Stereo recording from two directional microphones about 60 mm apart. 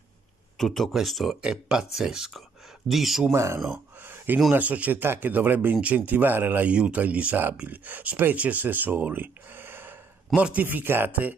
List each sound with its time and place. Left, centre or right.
0.6 s speech: centre
1.4 s speech: centre
3.3 s speech: right
4.0 s a sound: right
4.5 s speech: right
6.7 s speech: right
10.3 s speech: right